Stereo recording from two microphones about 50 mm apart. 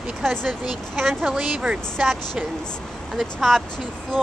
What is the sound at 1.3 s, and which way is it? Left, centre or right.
Speech, right.